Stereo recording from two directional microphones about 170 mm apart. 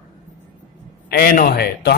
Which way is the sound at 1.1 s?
65° left (ahead or behind).